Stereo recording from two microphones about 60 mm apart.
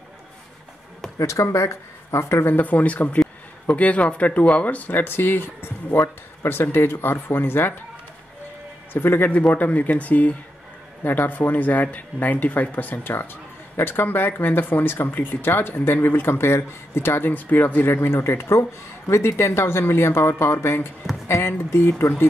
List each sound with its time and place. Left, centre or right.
1.1 s speech: left
2.5 s speech: left
8.9 s speech: left